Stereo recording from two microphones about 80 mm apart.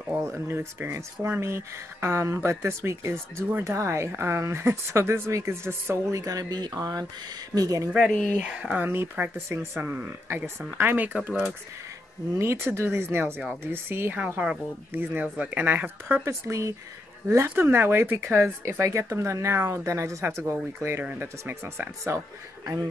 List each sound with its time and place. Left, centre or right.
0.1 s speech: right
6.2 s speech: right
8.5 s speech: centre
9.5 s speech: right
12.4 s speech: right
16.3 s speech: right